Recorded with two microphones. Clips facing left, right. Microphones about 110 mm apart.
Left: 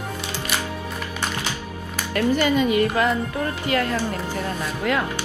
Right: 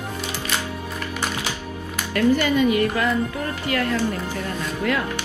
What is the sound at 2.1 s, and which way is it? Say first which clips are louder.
Speech: right 1 dB; 20° left (ahead or behind).